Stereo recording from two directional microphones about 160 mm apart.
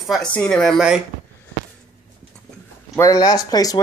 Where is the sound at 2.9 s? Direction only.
20° left (ahead or behind).